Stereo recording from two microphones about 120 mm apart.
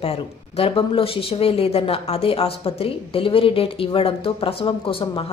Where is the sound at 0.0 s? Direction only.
55° left (ahead or behind).